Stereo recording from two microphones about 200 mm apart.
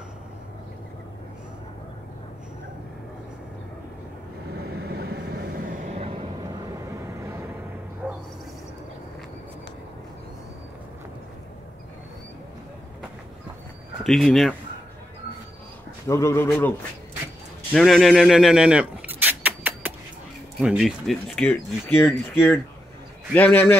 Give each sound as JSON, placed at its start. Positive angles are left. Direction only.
{"t": 4.7, "sound": "vehicle", "side_deg": -55}
{"t": 7.2, "sound": "vehicle", "side_deg": -15}
{"t": 8.0, "sound": "a sound", "side_deg": -5}
{"t": 14.0, "sound": "speech", "side_deg": 0}
{"t": 16.1, "sound": "speech", "side_deg": 15}
{"t": 17.7, "sound": "a sound", "side_deg": 0}
{"t": 20.6, "sound": "speech", "side_deg": 0}